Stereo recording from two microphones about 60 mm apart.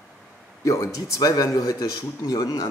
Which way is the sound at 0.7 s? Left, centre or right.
Left.